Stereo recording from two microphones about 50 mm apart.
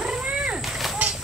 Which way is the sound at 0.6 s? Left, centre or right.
Centre.